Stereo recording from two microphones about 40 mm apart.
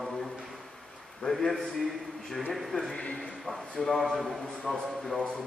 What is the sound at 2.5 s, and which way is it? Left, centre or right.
A man's voice, centre.